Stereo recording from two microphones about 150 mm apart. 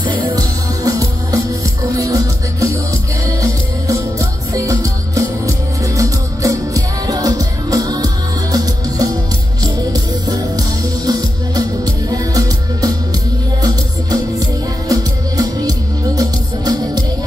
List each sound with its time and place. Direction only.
0.0 s music: 30° right (ahead or behind)